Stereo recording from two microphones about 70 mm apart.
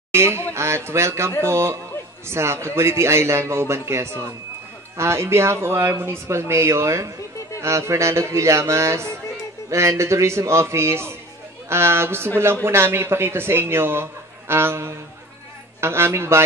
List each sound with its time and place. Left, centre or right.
0.1 s a man's voice: right